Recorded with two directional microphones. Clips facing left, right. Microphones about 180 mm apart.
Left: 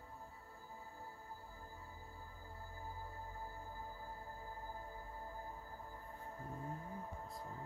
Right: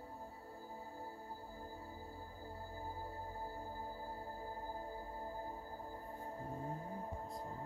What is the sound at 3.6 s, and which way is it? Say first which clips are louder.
Music: right 4 dB; 35° right (ahead or behind).